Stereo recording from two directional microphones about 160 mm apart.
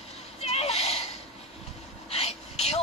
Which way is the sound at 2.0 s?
40° left (ahead or behind).